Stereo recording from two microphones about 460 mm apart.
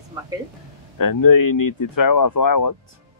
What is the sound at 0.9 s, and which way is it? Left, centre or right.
Speech, left.